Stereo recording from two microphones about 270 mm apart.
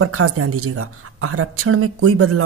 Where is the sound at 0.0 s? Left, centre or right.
Right.